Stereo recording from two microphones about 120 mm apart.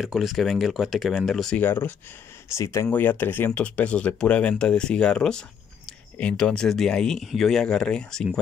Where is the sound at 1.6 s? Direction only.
15° left (ahead or behind).